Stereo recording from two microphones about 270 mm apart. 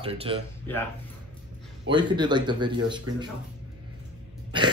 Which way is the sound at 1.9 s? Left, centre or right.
Centre.